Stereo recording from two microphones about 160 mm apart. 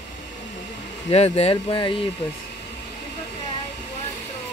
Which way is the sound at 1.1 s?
40° left (ahead or behind).